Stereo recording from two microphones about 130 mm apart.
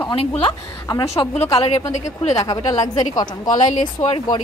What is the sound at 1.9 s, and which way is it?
Speech, 60° left (ahead or behind).